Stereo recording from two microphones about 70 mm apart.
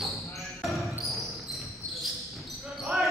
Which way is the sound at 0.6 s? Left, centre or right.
Centre.